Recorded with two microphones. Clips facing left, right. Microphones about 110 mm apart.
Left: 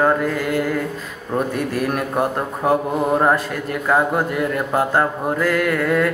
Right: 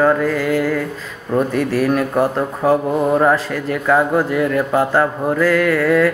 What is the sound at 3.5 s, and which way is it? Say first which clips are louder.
Mantra: right 3 dB; 20° left (ahead or behind).